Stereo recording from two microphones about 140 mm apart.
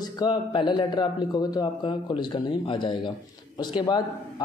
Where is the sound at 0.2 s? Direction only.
30° left (ahead or behind).